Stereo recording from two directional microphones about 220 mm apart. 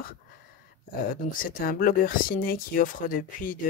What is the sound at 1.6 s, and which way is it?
Speech, 40° left (ahead or behind).